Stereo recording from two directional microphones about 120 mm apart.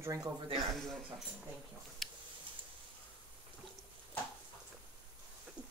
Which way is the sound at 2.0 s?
Centre (ahead or behind).